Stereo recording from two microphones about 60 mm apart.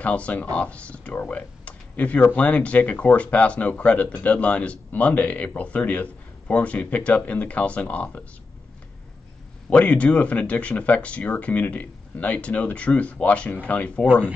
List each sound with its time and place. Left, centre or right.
0.0 s speech: left
9.7 s speech: left